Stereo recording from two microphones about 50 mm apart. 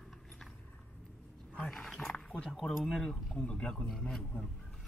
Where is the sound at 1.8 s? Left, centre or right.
Centre.